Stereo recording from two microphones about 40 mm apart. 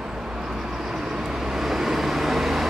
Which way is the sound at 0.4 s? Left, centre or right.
Centre.